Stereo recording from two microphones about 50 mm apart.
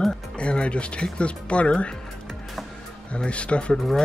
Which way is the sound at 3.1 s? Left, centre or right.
Left.